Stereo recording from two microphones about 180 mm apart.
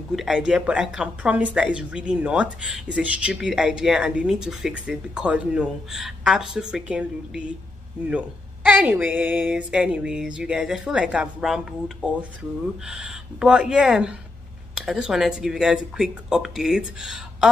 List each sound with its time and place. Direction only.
0.1 s speech: centre (ahead or behind)